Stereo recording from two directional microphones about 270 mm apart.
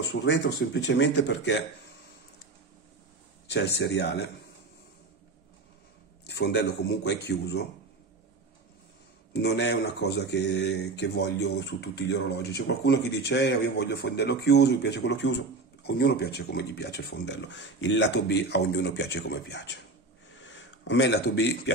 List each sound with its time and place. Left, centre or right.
0.1 s speech: left
3.4 s speech: left
6.2 s speech: left
9.3 s speech: left